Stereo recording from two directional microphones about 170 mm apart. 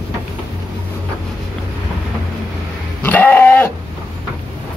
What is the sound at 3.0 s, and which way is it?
Dog, 10° left (ahead or behind).